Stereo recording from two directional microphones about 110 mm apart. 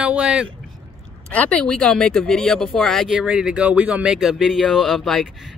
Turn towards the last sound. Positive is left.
turn(degrees=0)  # may be behind; listen again after turning